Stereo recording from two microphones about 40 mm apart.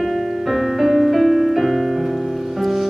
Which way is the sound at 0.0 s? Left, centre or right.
Centre.